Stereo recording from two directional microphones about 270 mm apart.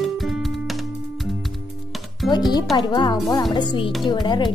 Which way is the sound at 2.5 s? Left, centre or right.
Centre.